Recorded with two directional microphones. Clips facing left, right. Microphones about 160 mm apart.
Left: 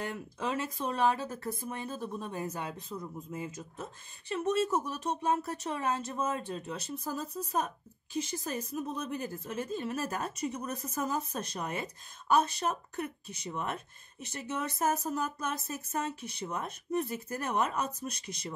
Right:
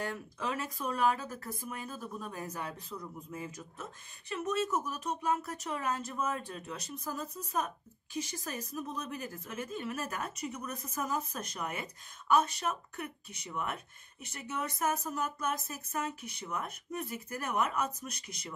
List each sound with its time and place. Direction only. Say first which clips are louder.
0.1 s speech: left 2 dB; 25° left (ahead or behind)